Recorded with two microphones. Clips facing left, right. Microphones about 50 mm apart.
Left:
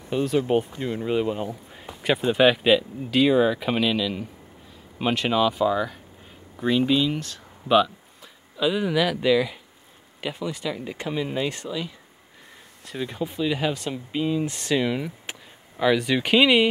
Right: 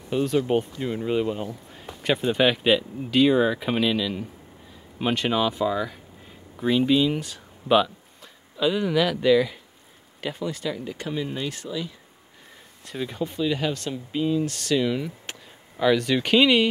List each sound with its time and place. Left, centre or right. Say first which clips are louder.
0.1 s speech: even; centre
10.8 s speech: left 1 dB; centre
11.6 s speech: left 1 dB; left
12.8 s speech: even; centre